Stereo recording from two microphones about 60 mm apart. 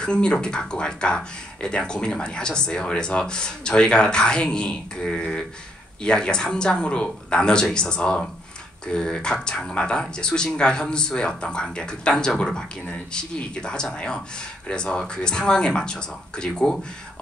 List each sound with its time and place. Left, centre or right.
0.0 s speech: centre